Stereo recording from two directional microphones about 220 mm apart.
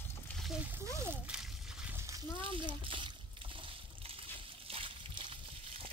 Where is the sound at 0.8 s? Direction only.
15° right (ahead or behind).